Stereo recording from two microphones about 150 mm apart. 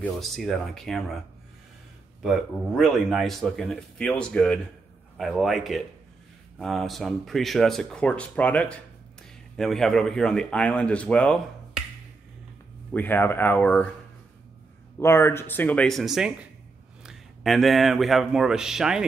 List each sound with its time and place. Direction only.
0.0 s speech: centre (ahead or behind)
2.2 s speech: centre (ahead or behind)
12.9 s speech: 15° left (ahead or behind)
15.0 s speech: 15° left (ahead or behind); by 19.0 s 5° right (ahead or behind)